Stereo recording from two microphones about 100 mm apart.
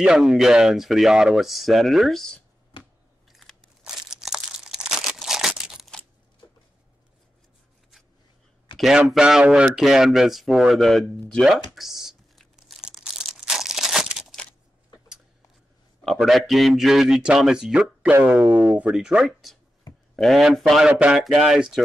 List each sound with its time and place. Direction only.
0.0 s speech: 5° right (ahead or behind)
3.3 s crunch: centre (ahead or behind)
8.7 s speech: 5° right (ahead or behind)
11.4 s crumpling: centre (ahead or behind)
16.0 s speech: centre (ahead or behind)
20.9 s speech: 10° right (ahead or behind)